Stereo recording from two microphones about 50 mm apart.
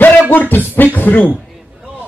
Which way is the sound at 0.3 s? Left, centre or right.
Left.